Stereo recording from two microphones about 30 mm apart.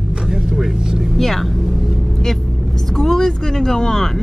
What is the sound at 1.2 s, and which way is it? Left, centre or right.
Speech, centre.